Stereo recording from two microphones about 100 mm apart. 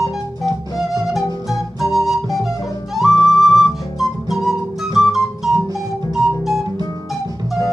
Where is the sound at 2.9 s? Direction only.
Centre (ahead or behind).